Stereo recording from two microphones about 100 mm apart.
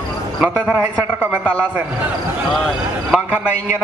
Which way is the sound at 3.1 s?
10° right (ahead or behind).